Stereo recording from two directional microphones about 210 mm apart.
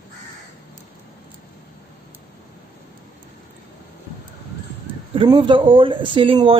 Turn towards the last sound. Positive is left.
turn(degrees=-25)  # may be behind; listen again after turning